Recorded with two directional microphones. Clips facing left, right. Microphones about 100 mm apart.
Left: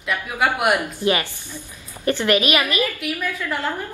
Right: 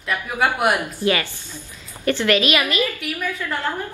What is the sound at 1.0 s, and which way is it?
A woman's voice, 20° left (ahead or behind).